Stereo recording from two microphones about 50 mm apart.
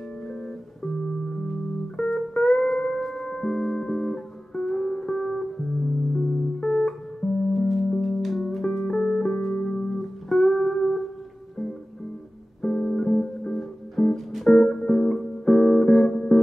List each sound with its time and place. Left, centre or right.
2.0 s music: centre
7.5 s music: centre
8.8 s music: centre
9.9 s music: centre
12.6 s guitar: centre
14.1 s music: centre
14.6 s music: centre